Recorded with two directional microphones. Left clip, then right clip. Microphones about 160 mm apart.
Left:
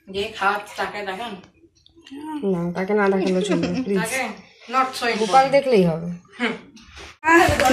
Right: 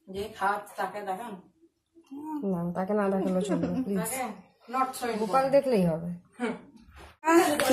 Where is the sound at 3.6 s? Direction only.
40° right (ahead or behind).